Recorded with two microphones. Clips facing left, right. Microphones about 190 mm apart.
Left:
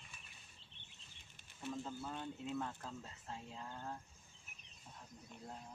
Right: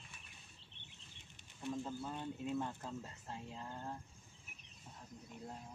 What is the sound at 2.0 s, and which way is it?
Speech, 10° right (ahead or behind).